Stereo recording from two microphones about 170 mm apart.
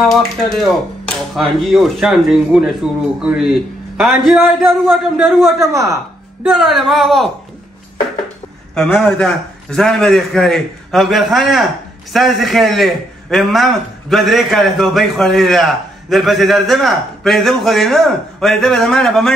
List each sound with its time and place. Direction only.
0.1 s a man's voice: centre (ahead or behind)
5.6 s a woman's voice: 20° right (ahead or behind)
6.4 s a man's voice: centre (ahead or behind)
8.7 s a man's voice: 5° left (ahead or behind)